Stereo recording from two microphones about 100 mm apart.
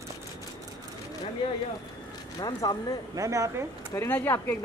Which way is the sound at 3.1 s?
35° right (ahead or behind).